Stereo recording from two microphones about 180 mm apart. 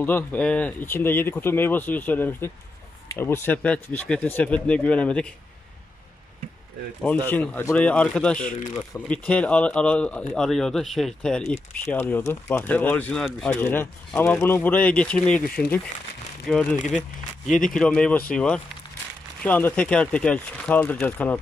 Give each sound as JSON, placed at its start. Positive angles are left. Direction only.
{"t": 0.0, "sound": "speech", "side_deg": 10}
{"t": 7.2, "sound": "speech", "side_deg": 10}
{"t": 8.5, "sound": "speech", "side_deg": 45}
{"t": 8.7, "sound": "speech", "side_deg": 10}